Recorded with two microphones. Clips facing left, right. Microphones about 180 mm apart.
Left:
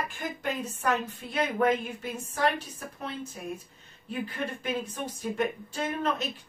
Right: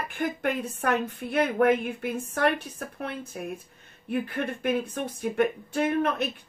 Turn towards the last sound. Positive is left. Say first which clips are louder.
# right 5 dB
turn(degrees=-60)  # may be behind; listen again after turning